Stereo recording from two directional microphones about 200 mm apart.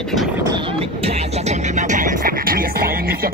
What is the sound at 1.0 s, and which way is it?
Music, 35° right (ahead or behind).